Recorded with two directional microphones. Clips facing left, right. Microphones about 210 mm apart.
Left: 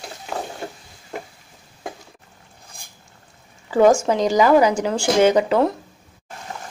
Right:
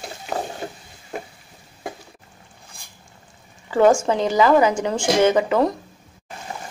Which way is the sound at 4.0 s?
10° left (ahead or behind).